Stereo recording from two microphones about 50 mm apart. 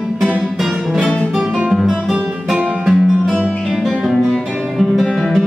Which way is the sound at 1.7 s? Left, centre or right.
Centre.